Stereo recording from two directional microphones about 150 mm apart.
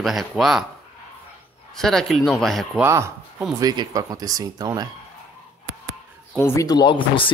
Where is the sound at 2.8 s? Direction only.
20° right (ahead or behind).